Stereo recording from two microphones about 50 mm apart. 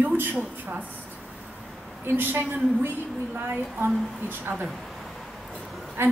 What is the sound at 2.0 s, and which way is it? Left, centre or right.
Speech, right.